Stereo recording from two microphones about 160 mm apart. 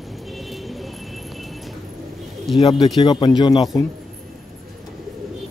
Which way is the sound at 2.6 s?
30° left (ahead or behind).